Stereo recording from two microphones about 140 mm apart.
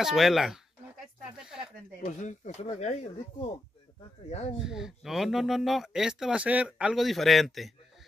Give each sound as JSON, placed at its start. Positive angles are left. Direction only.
{"t": 0.0, "sound": "speech", "side_deg": 0}
{"t": 2.0, "sound": "speech", "side_deg": 60}
{"t": 4.3, "sound": "speech", "side_deg": 50}
{"t": 4.6, "sound": "speech", "side_deg": -5}